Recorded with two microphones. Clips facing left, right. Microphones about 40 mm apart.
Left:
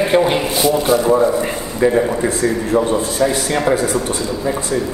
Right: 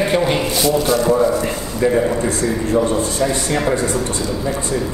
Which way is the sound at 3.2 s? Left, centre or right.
Centre.